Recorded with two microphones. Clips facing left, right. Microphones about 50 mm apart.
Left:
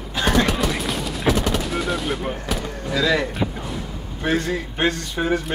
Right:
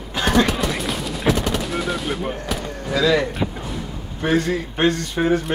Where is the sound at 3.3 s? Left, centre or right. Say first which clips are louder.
Even; centre.